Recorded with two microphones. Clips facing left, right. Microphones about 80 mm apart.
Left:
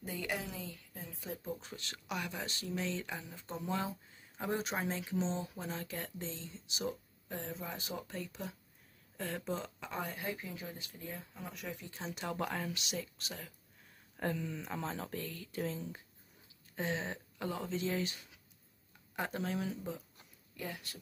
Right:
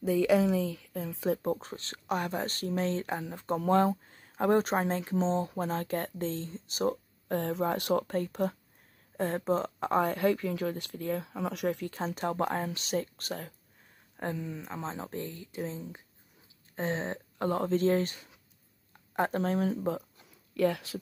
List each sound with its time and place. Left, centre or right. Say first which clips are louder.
0.2 s speech: right 16 dB; right
1.6 s speech: right 5 dB; right
8.1 s speech: right 13 dB; right
12.0 s speech: right 6 dB; right
14.1 s speech: right 2 dB; right
16.7 s speech: right 5 dB; right
20.5 s speech: right 16 dB; right